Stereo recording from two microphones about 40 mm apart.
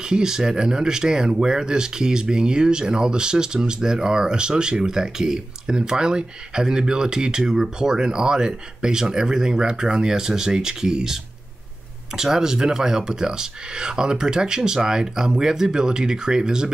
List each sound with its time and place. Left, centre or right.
0.0 s speech: centre